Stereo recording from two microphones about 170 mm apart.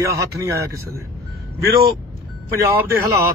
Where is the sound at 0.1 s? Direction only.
20° right (ahead or behind).